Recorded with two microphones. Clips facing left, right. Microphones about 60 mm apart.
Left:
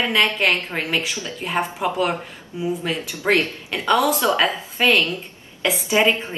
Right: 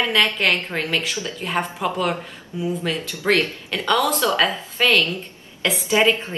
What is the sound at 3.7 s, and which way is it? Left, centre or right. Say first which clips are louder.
A woman's voice: left 2 dB; centre.